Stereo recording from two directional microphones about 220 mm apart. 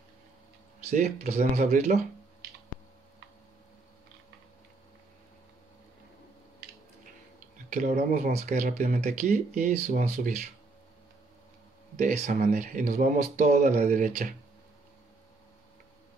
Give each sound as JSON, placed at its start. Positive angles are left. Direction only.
{"t": 0.8, "sound": "speech", "side_deg": -30}
{"t": 7.7, "sound": "speech", "side_deg": -35}
{"t": 12.0, "sound": "speech", "side_deg": -35}